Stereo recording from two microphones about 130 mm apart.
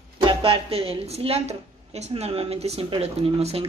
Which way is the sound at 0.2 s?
40° right (ahead or behind).